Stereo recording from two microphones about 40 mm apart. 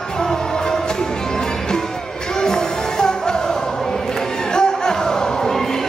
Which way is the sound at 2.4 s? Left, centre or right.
Centre.